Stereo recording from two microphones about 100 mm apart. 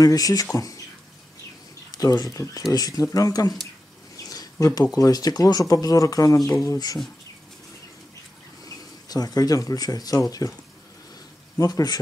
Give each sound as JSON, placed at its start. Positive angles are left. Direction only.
{"t": 0.0, "sound": "speech", "side_deg": 40}
{"t": 1.9, "sound": "speech", "side_deg": 40}
{"t": 4.3, "sound": "a sound", "side_deg": 35}
{"t": 4.9, "sound": "speech", "side_deg": 35}
{"t": 8.6, "sound": "speech", "side_deg": 40}
{"t": 11.6, "sound": "speech", "side_deg": 40}